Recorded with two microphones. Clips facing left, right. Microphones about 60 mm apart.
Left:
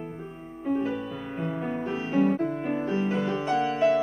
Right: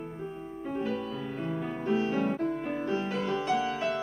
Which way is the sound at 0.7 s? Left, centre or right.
Centre.